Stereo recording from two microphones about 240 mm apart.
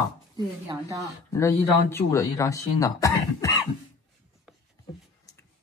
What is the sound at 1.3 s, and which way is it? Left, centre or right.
Speech, centre.